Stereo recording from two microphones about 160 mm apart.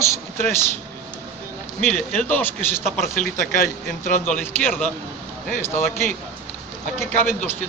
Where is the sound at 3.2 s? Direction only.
55° left (ahead or behind).